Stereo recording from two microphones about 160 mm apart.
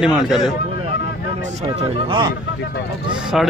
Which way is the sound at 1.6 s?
30° right (ahead or behind).